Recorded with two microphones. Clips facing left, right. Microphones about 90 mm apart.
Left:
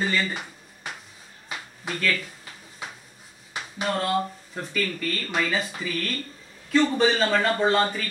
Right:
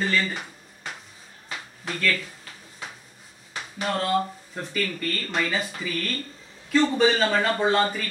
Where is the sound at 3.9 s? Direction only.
5° left (ahead or behind).